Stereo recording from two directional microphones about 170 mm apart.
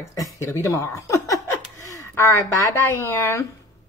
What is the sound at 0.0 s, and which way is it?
Speech, 20° left (ahead or behind).